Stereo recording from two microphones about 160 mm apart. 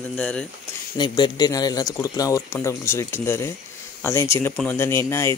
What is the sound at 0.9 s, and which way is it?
A man's voice, 30° left (ahead or behind).